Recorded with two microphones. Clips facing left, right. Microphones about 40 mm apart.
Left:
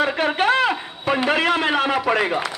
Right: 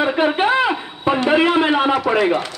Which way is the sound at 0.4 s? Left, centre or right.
Centre.